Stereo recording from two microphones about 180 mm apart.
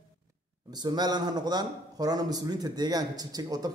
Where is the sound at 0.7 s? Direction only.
20° right (ahead or behind).